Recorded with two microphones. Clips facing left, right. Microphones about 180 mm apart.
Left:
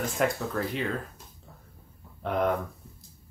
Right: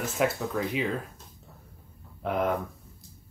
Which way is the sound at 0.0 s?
Centre (ahead or behind).